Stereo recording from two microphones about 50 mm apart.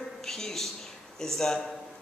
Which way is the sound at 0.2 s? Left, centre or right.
Centre.